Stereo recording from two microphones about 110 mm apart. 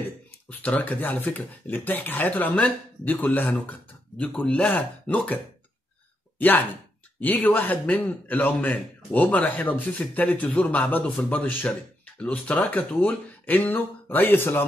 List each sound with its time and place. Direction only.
0.5 s a man's voice: 15° left (ahead or behind)